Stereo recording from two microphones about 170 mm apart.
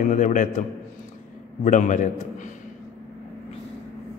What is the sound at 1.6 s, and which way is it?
Speech, 45° left (ahead or behind).